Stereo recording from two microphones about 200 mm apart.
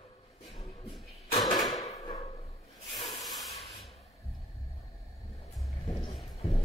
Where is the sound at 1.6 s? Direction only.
35° left (ahead or behind).